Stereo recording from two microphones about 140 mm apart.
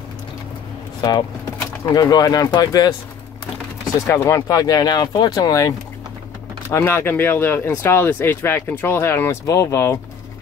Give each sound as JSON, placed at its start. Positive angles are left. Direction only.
{"t": 1.6, "sound": "speech", "side_deg": 25}
{"t": 4.1, "sound": "speech", "side_deg": 20}